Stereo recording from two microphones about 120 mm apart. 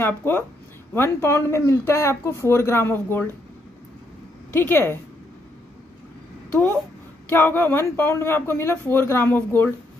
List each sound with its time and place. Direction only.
0.0 s speech: 15° left (ahead or behind)
4.5 s speech: 15° left (ahead or behind)
7.2 s speech: 15° left (ahead or behind)